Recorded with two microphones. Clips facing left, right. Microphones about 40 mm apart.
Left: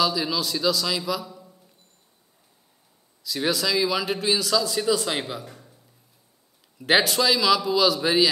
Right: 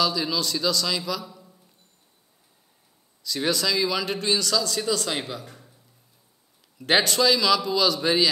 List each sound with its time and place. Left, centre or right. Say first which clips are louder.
0.0 s a man's voice: left 1 dB; centre
3.3 s speech: even; centre
6.8 s a man's voice: even; centre